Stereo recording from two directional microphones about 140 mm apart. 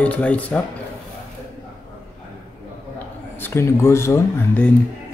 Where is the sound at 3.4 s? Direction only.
20° left (ahead or behind).